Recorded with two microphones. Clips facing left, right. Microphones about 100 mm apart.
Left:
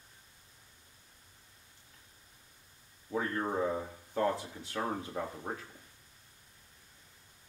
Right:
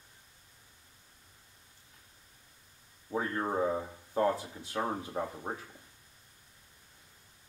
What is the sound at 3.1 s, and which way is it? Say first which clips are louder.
Speech: right 1 dB; 20° right (ahead or behind).